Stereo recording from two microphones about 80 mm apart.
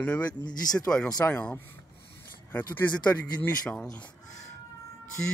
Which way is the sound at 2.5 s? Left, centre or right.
Left.